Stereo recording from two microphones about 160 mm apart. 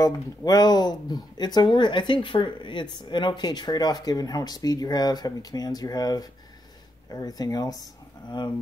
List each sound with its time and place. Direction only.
0.0 s speech: 25° left (ahead or behind)